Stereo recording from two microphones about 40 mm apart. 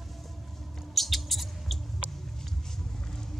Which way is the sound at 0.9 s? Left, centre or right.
Centre.